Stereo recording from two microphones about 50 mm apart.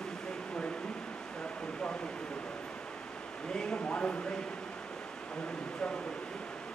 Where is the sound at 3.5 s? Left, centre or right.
Centre.